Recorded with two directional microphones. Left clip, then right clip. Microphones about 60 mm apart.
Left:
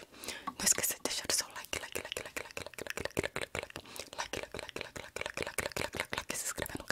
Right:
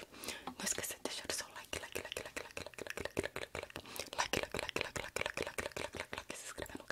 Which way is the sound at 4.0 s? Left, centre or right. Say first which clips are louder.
Right 3 dB; centre.